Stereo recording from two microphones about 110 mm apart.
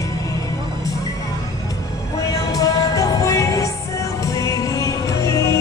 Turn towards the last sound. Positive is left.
turn(degrees=25)  # may be behind; listen again after turning